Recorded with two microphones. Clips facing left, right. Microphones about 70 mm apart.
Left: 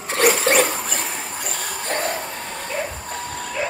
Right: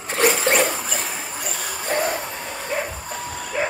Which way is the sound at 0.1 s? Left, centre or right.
Centre.